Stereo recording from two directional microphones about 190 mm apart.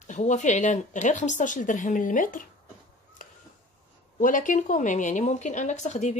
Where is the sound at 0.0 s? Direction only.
40° left (ahead or behind).